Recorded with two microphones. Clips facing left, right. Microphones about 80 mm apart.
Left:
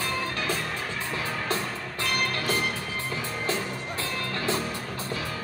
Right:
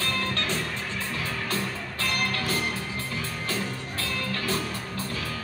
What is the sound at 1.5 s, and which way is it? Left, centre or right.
Music, centre.